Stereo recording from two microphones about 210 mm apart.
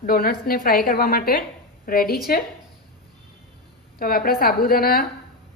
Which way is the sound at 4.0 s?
45° left (ahead or behind).